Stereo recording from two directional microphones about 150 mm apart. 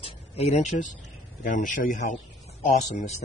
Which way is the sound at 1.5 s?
60° left (ahead or behind).